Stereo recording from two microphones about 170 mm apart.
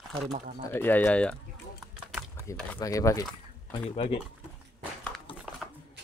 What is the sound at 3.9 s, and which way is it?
Speech, 35° left (ahead or behind).